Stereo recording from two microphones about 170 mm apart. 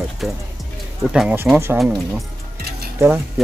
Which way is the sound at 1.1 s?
Centre (ahead or behind).